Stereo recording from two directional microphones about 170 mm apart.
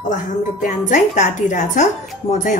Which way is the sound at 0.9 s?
45° left (ahead or behind).